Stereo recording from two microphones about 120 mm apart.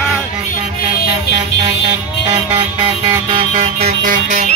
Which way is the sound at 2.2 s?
35° right (ahead or behind).